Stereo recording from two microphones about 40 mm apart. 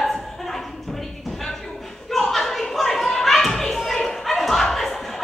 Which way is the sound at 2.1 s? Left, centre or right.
Centre.